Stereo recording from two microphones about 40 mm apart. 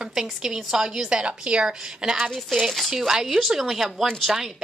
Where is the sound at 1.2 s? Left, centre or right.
Right.